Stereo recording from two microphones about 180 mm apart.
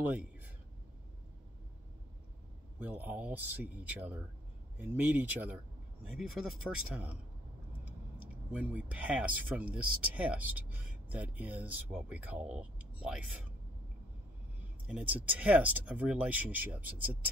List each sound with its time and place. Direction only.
0.0 s speech: 10° right (ahead or behind)
2.8 s speech: 10° right (ahead or behind)
8.5 s speech: 10° right (ahead or behind)
14.9 s speech: 10° right (ahead or behind)